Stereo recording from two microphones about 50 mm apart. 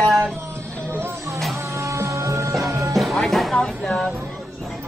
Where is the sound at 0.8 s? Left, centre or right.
Right.